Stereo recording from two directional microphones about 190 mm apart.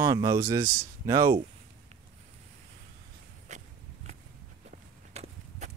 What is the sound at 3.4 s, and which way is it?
Walk, 40° right (ahead or behind).